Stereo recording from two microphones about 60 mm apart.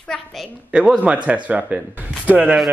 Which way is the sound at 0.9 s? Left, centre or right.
Right.